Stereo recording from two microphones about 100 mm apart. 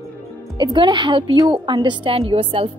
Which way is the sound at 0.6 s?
50° right (ahead or behind).